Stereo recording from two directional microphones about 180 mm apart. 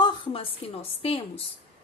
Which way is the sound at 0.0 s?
30° left (ahead or behind).